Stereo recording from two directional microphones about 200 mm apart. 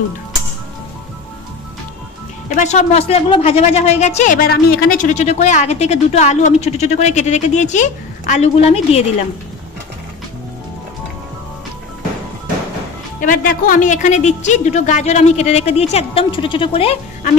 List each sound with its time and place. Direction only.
2.5 s a woman's voice: 35° left (ahead or behind)
13.2 s a woman's voice: 45° left (ahead or behind); by 17.0 s 30° left (ahead or behind)